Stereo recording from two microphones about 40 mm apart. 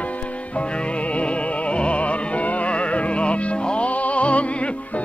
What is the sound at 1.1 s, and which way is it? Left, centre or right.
Music, left.